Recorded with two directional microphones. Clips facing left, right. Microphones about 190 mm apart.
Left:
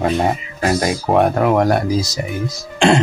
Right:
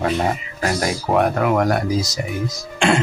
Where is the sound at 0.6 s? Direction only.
20° left (ahead or behind).